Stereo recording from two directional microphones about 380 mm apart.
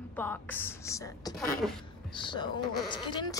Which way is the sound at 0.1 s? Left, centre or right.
Centre.